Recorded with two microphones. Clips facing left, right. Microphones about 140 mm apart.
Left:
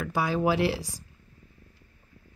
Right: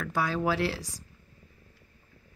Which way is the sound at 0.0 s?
10° left (ahead or behind).